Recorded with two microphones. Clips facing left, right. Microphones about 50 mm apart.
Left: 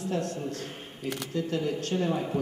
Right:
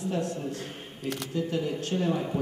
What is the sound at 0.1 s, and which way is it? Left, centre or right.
A man's voice, centre.